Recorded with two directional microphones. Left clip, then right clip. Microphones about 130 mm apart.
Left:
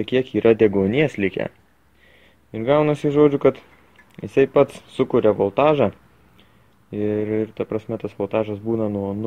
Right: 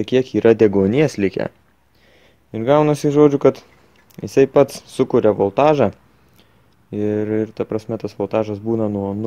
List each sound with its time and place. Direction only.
0.0 s speech: 40° right (ahead or behind)
2.5 s speech: 40° right (ahead or behind)